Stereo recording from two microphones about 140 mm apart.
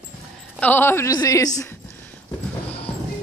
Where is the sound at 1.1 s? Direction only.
25° left (ahead or behind).